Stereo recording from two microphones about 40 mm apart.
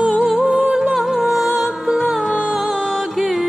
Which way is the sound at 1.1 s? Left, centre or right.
Centre.